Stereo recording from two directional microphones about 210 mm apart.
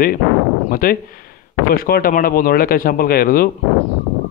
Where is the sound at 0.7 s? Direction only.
45° left (ahead or behind).